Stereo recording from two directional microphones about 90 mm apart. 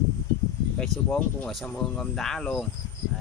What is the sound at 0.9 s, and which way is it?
Speech, 40° right (ahead or behind).